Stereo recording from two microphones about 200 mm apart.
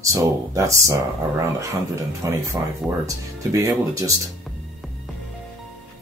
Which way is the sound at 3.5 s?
15° right (ahead or behind).